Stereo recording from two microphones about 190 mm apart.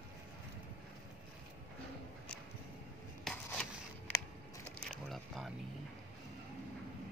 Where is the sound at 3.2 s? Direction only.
5° left (ahead or behind).